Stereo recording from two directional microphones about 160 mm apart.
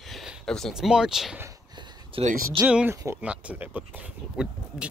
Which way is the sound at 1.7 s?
35° right (ahead or behind).